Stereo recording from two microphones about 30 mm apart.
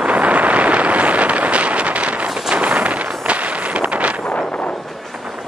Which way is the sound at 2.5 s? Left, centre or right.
Right.